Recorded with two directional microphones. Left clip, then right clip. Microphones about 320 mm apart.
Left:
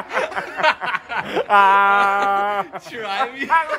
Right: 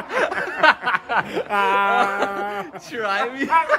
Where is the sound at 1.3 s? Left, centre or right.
Centre.